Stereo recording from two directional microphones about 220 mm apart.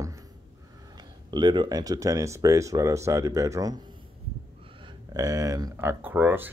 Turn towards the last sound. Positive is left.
turn(degrees=-10)  # may be behind; listen again after turning